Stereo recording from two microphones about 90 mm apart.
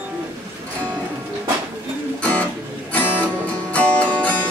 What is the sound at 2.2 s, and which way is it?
Music, 15° left (ahead or behind).